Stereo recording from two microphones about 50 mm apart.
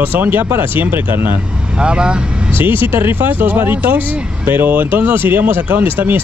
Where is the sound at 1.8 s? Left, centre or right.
Centre.